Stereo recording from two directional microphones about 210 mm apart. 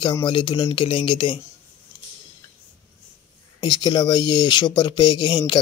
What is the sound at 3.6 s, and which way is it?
Speech, 20° left (ahead or behind).